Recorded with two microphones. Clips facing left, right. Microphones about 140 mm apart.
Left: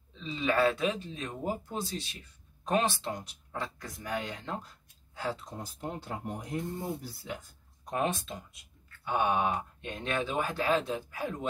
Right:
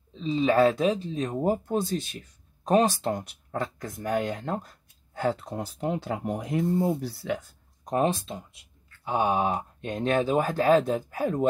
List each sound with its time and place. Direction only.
0.1 s speech: 35° right (ahead or behind); by 7.4 s 75° right (ahead or behind)
7.8 s speech: 35° right (ahead or behind)